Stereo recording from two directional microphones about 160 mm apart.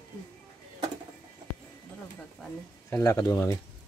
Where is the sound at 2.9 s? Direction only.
20° left (ahead or behind).